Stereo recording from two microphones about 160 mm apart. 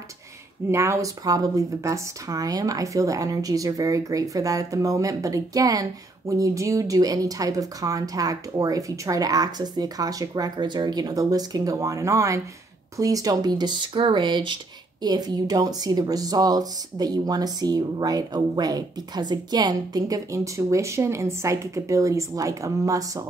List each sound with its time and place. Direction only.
0.7 s speech: 15° right (ahead or behind)